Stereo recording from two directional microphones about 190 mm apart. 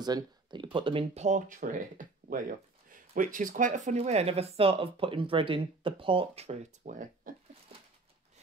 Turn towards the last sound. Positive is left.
turn(degrees=-45)  # may be behind; listen again after turning